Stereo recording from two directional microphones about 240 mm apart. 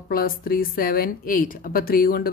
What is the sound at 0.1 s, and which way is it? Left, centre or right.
A woman's voice, left.